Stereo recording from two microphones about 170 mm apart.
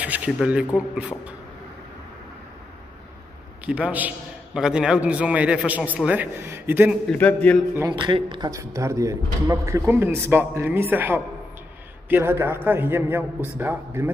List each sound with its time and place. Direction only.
0.0 s speech: 10° right (ahead or behind)
3.6 s speech: 10° right (ahead or behind)
7.1 s a man's voice: 10° left (ahead or behind)
7.9 s speech: 30° right (ahead or behind)